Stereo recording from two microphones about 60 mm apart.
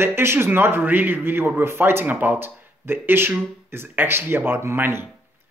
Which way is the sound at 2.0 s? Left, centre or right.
Right.